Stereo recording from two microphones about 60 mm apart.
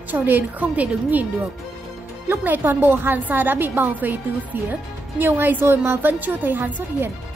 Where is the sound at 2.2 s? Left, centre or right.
Right.